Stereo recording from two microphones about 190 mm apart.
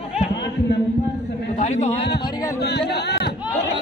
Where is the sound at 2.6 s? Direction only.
65° left (ahead or behind).